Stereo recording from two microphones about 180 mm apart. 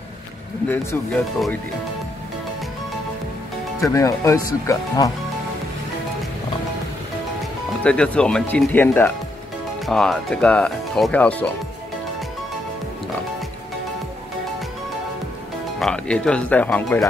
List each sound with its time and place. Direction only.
0.7 s speech: 10° left (ahead or behind)
3.8 s speech: 15° left (ahead or behind)
7.8 s speech: 5° left (ahead or behind)
15.8 s speech: 5° left (ahead or behind)